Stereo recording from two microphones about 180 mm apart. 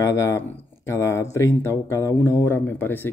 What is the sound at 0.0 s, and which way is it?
Speech, 15° left (ahead or behind).